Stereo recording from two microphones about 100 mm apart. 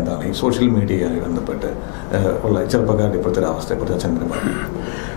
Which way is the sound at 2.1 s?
20° left (ahead or behind).